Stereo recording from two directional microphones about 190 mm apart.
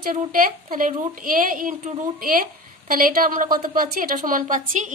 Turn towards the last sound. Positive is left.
turn(degrees=-45)  # may be behind; listen again after turning